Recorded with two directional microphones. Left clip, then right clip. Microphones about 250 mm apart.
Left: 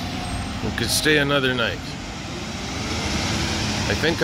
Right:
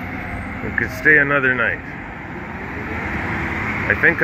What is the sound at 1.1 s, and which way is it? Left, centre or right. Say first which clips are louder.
Speech: right 6 dB; centre.